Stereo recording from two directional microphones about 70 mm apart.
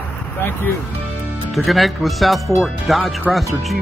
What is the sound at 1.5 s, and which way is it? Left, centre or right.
Speech, centre.